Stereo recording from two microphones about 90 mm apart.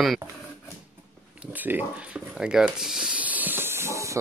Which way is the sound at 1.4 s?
20° right (ahead or behind).